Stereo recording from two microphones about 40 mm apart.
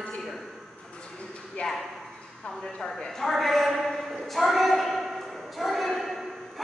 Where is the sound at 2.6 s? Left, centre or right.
Centre.